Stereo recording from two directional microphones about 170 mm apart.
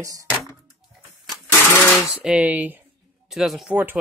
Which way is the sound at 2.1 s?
5° right (ahead or behind).